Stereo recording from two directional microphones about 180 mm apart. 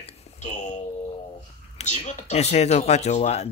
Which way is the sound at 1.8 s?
40° left (ahead or behind).